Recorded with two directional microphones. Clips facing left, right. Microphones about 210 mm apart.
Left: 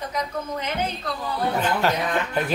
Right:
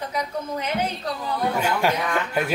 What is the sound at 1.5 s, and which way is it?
Speech, 10° right (ahead or behind).